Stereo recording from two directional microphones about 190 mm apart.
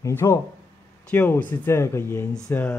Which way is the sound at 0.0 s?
15° left (ahead or behind).